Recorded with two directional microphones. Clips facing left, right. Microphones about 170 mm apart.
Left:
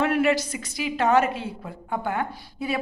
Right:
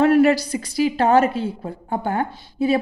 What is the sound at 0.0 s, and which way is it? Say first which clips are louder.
A woman's voice: right 7 dB; 35° right (ahead or behind).